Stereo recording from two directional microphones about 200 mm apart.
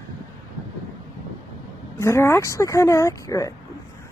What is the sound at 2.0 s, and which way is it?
A woman's voice, 15° left (ahead or behind).